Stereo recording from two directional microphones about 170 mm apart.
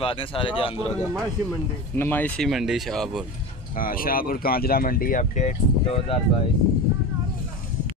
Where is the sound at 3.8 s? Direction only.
55° left (ahead or behind); by 6.2 s 40° left (ahead or behind).